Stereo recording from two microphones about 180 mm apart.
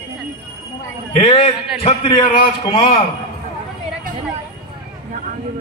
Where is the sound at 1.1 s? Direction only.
30° left (ahead or behind).